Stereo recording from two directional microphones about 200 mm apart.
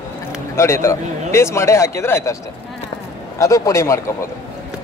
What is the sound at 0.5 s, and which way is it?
A man's voice, 15° left (ahead or behind).